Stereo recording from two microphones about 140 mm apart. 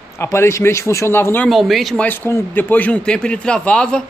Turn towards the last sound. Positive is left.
turn(degrees=5)  # may be behind; listen again after turning